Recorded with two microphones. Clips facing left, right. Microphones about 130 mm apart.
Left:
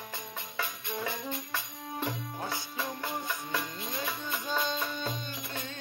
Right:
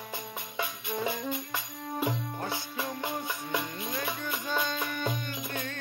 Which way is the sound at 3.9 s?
15° left (ahead or behind).